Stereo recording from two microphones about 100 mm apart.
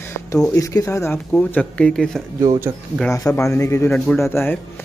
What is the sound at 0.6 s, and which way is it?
Speech, 35° left (ahead or behind).